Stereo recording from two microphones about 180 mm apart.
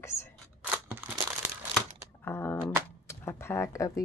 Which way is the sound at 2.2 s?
10° left (ahead or behind).